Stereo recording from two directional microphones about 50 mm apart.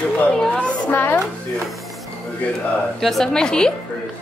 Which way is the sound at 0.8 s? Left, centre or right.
Left.